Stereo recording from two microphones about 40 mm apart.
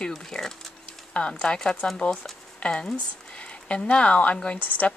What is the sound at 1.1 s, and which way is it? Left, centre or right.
Speech, left.